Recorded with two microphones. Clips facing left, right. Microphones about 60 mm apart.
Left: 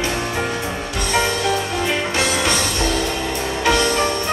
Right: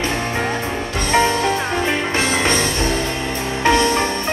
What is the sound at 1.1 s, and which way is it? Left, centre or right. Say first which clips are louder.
Music: right 3 dB; right.